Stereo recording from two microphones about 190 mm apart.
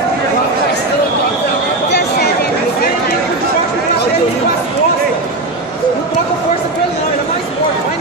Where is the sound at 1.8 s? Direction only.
60° left (ahead or behind).